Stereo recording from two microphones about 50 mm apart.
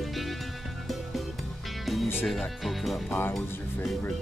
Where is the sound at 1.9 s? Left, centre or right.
Centre.